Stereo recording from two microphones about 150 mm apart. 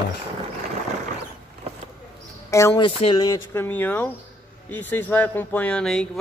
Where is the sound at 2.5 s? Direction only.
20° left (ahead or behind).